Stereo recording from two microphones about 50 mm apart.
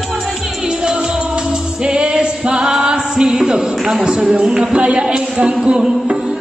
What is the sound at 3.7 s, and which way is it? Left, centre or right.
Speech, centre.